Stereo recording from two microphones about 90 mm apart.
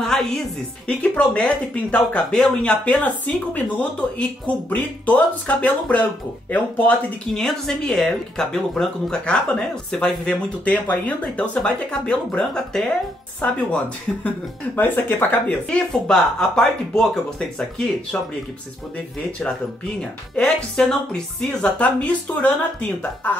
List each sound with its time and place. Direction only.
0.0 s music: 5° left (ahead or behind)
0.8 s speech: 15° left (ahead or behind)
7.3 s speech: 5° left (ahead or behind); by 15.5 s 20° left (ahead or behind)
15.7 s speech: 5° left (ahead or behind)
20.0 s speech: 10° left (ahead or behind)